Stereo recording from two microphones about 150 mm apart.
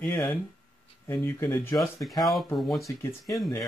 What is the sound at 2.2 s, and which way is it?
Speech, centre (ahead or behind).